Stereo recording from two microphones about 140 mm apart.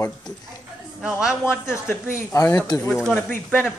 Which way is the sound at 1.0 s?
5° right (ahead or behind).